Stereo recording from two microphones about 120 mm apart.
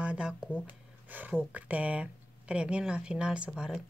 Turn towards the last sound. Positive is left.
turn(degrees=-5)  # may be behind; listen again after turning